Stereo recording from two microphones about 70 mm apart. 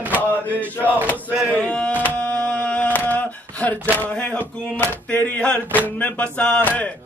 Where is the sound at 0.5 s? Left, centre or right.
Left.